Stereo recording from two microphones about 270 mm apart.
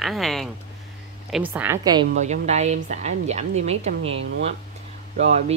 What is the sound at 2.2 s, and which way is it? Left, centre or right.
Speech, right.